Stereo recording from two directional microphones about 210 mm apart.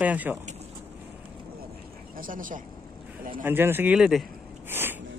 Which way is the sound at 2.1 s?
40° right (ahead or behind).